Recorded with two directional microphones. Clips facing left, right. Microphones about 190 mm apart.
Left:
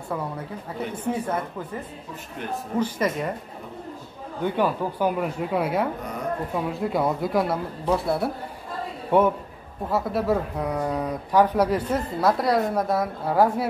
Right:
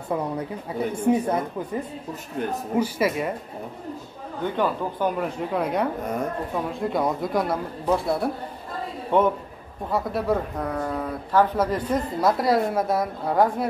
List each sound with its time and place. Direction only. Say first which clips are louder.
0.1 s a woman's voice: right 4 dB; 20° right (ahead or behind)
2.7 s speech: right 1 dB; 10° right (ahead or behind)
4.6 s a man's voice: left 1 dB; 10° left (ahead or behind)